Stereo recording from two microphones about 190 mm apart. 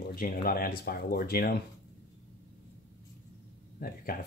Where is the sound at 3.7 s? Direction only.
50° left (ahead or behind).